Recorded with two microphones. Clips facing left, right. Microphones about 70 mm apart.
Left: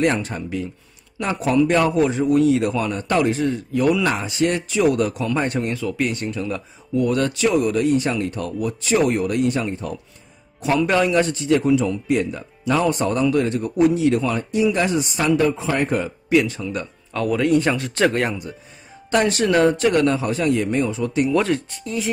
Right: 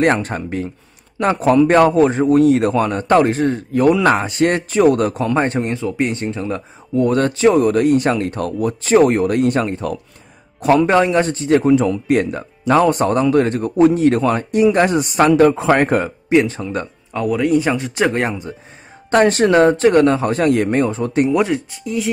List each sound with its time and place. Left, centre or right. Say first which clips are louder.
0.0 s a man's voice: right 4 dB; right
10.6 s a man's voice: right 6 dB; right
10.9 s a man's voice: right 4 dB; right
16.3 s a man's voice: right 3 dB; right
17.1 s speech: right 2 dB; centre; by 18.5 s right
19.0 s a man's voice: right 6 dB; right
21.3 s speech: right 1 dB; centre
21.5 s speech: right 4 dB; centre